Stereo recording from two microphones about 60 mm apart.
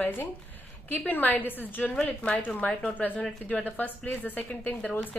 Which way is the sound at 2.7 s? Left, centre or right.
Centre.